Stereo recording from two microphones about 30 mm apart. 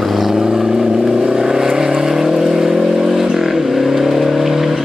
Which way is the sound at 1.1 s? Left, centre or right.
Right.